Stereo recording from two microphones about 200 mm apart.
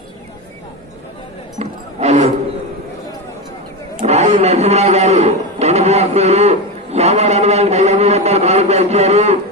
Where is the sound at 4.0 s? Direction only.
35° right (ahead or behind).